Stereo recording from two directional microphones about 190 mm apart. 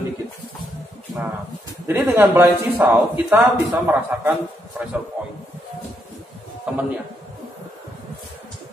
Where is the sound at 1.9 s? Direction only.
10° right (ahead or behind).